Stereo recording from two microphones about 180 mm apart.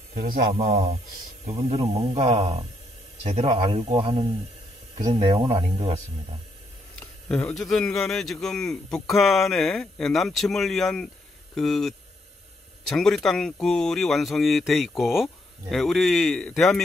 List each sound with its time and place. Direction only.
0.2 s speech: 55° right (ahead or behind)
1.6 s speech: 35° right (ahead or behind)
5.1 s speech: 30° right (ahead or behind)
7.2 s speech: 5° left (ahead or behind)